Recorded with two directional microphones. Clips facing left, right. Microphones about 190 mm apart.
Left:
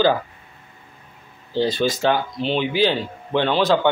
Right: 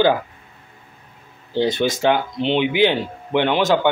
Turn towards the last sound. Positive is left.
turn(degrees=-15)  # may be behind; listen again after turning